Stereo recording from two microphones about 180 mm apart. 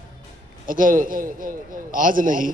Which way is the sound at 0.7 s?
50° right (ahead or behind).